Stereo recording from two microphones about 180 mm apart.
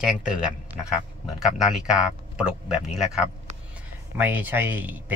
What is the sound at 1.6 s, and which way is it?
A man's voice, 5° right (ahead or behind).